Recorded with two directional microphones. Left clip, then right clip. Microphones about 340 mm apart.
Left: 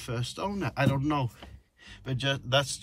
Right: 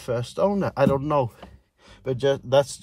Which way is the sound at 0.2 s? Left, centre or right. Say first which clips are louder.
Right 11 dB; left.